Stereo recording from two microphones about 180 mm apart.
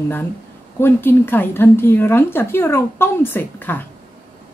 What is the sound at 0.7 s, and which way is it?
Speech, 10° left (ahead or behind).